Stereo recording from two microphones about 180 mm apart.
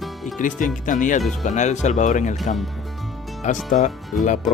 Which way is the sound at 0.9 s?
45° left (ahead or behind).